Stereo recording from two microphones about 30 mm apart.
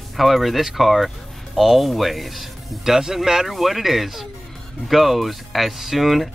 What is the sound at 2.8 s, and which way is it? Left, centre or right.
Speech, centre.